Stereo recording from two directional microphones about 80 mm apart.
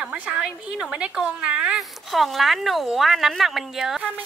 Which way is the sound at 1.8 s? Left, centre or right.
Centre.